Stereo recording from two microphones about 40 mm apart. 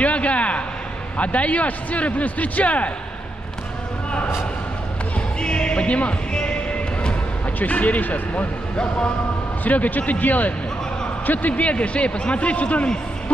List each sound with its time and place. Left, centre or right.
0.0 s a sound: left
1.1 s a man's voice: left
5.4 s music: left
7.5 s a man's voice: left
8.7 s speech: left
9.7 s a man's voice: left